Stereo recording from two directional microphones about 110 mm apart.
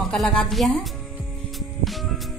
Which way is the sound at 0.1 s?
5° left (ahead or behind).